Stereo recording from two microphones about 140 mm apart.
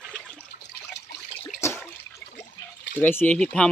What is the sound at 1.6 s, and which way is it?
Water, 20° left (ahead or behind).